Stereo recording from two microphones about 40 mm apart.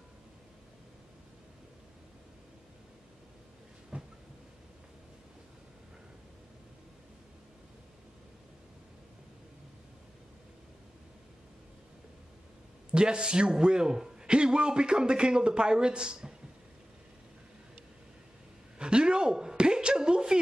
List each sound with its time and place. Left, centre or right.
3.9 s train: right
12.9 s a man's voice: right
18.8 s a sound: right